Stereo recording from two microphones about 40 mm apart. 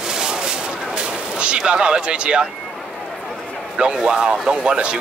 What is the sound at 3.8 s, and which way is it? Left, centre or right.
Speech, right.